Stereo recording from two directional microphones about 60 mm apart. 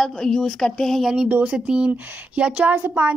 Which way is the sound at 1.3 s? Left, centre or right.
Centre.